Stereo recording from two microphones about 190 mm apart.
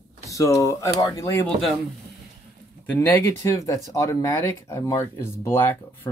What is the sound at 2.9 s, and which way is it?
Speech, 10° left (ahead or behind).